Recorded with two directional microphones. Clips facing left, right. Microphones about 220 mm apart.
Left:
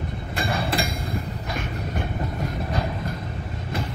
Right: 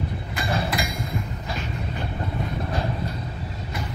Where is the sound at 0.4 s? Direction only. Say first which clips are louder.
Left 1 dB; 30° left (ahead or behind).